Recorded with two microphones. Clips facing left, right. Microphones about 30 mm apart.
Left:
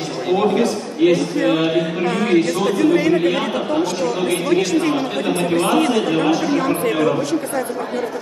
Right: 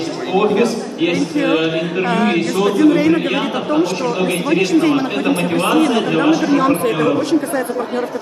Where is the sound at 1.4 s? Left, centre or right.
Right.